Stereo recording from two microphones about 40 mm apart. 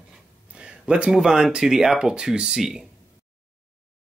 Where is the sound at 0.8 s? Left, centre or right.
Right.